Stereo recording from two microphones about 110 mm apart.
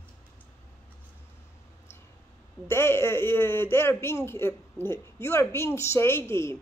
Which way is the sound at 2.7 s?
25° left (ahead or behind).